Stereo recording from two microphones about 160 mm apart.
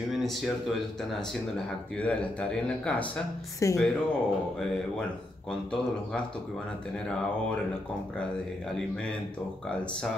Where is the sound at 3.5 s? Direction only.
20° left (ahead or behind).